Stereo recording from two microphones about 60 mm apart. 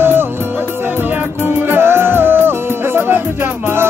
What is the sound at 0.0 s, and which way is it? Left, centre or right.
Music, right.